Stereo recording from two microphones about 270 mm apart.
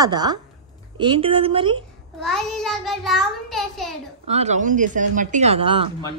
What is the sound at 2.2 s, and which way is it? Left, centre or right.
A child's voice, centre.